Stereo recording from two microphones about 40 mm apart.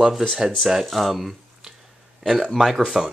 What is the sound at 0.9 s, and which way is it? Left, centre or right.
Speech, centre.